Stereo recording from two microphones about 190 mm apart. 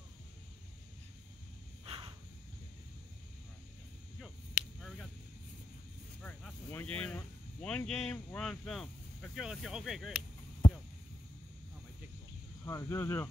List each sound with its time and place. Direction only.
1.9 s a sound: 30° right (ahead or behind)
4.2 s whip: centre (ahead or behind)
6.2 s vehicle: 10° left (ahead or behind)
12.6 s speech: 15° left (ahead or behind)